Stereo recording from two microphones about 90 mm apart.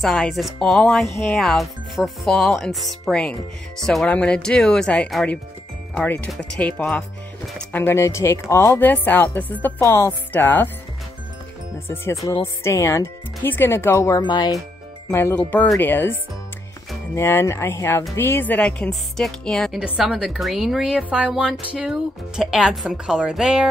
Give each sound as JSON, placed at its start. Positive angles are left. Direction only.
{"t": 0.0, "sound": "speech", "side_deg": 0}
{"t": 7.5, "sound": "speech", "side_deg": 25}
{"t": 11.9, "sound": "speech", "side_deg": 30}
{"t": 14.2, "sound": "speech", "side_deg": 50}
{"t": 15.0, "sound": "speech", "side_deg": 30}
{"t": 15.3, "sound": "speech", "side_deg": 15}
{"t": 18.6, "sound": "speech", "side_deg": 5}
{"t": 19.8, "sound": "a woman's voice", "side_deg": -10}